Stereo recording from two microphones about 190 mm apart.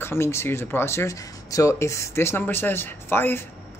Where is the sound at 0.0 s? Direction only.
15° left (ahead or behind).